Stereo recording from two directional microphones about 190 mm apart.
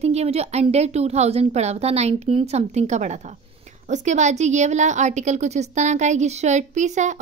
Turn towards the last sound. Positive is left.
turn(degrees=-40)  # may be behind; listen again after turning